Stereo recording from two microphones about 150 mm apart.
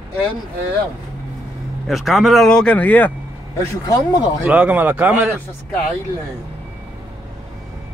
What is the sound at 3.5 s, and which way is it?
Speech, 25° left (ahead or behind).